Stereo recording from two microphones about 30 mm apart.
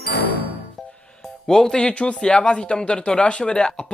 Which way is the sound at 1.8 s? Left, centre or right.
Left.